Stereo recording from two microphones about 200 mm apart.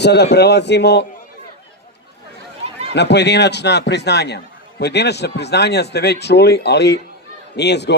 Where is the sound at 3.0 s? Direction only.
60° left (ahead or behind).